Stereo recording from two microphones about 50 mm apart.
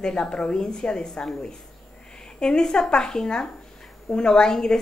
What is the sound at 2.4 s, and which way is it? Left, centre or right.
A woman's voice, centre.